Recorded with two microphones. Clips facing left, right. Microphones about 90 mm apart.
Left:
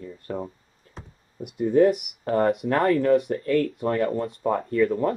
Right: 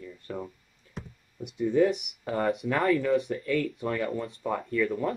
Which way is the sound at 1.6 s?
45° left (ahead or behind).